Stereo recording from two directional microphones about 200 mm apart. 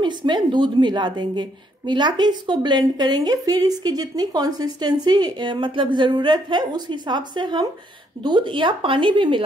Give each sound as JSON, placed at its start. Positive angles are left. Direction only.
{"t": 0.0, "sound": "speech", "side_deg": -20}